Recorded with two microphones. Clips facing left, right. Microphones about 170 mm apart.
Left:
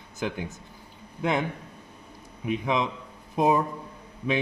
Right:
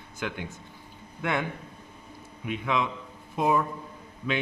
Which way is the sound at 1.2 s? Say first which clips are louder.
Left 3 dB; 20° left (ahead or behind).